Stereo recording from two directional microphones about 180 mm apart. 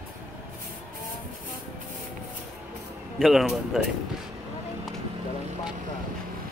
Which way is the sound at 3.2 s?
Centre (ahead or behind).